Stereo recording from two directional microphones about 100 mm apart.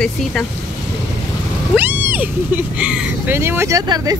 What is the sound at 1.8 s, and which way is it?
Speech, 20° right (ahead or behind).